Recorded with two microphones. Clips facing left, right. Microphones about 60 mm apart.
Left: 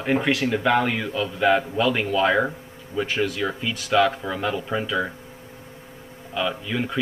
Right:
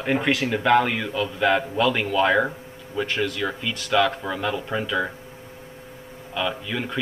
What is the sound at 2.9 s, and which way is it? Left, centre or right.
Speech, centre.